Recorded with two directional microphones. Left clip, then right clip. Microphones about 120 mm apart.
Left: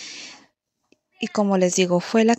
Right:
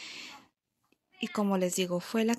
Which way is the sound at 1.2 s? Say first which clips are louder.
Left 10 dB; 55° left (ahead or behind).